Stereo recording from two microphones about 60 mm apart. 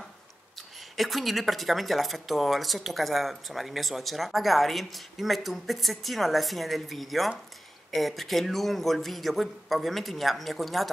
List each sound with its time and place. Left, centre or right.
0.6 s speech: centre